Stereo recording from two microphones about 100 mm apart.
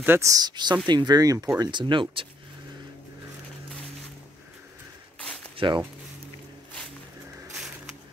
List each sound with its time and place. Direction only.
0.0 s speech: 20° right (ahead or behind)
0.3 s speech: 45° right (ahead or behind)
1.6 s speech: 50° right (ahead or behind)
5.6 s speech: 65° right (ahead or behind)
7.5 s a sound: 5° right (ahead or behind)